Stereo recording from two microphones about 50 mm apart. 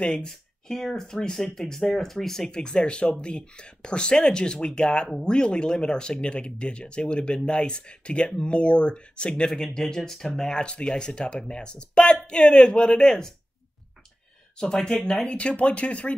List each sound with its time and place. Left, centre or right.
0.0 s speech: centre
14.6 s speech: centre